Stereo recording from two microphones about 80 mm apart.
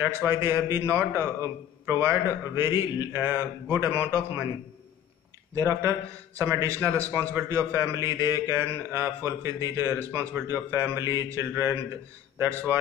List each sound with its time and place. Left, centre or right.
0.0 s speech: right
5.5 s speech: right